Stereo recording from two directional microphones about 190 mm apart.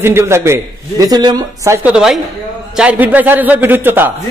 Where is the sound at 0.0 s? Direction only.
10° right (ahead or behind).